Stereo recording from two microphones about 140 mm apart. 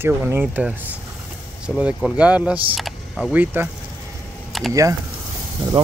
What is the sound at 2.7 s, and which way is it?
Computer keyboard, centre (ahead or behind).